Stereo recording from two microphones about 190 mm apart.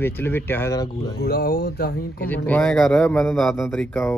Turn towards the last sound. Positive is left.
turn(degrees=10)  # may be behind; listen again after turning